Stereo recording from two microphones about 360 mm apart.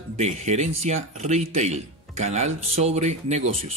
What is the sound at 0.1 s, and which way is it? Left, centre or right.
Speech, centre.